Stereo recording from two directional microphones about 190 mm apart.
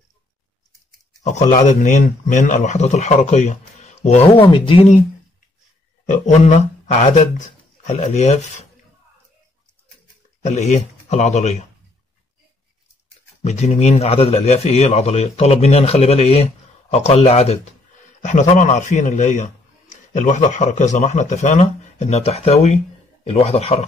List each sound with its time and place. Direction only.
1.2 s speech: 40° left (ahead or behind)
6.0 s speech: 40° left (ahead or behind)
10.4 s speech: 40° left (ahead or behind)
13.4 s speech: 35° left (ahead or behind)